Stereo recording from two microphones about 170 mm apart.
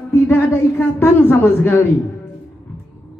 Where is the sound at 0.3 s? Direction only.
15° left (ahead or behind).